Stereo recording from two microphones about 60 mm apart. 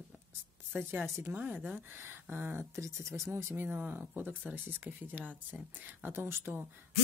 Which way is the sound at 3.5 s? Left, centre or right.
Right.